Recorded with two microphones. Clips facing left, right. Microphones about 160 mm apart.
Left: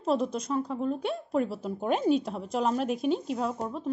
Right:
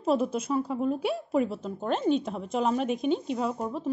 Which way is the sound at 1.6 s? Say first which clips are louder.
Left 1 dB; 10° left (ahead or behind).